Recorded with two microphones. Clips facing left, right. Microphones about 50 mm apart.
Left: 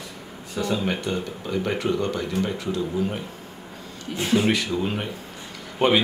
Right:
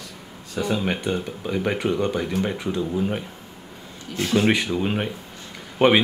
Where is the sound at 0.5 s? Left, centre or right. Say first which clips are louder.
Right 1 dB; centre.